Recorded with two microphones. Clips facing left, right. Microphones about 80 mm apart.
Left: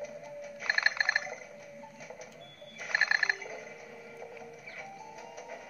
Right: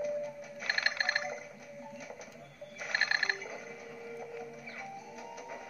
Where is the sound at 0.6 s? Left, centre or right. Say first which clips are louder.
Left 3 dB; left.